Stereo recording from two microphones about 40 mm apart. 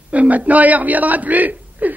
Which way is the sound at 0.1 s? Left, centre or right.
Right.